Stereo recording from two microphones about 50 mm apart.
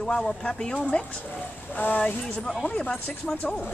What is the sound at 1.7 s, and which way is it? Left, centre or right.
Speech, left.